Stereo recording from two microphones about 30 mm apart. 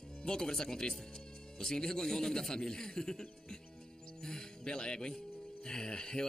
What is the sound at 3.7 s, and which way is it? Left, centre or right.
Music, left.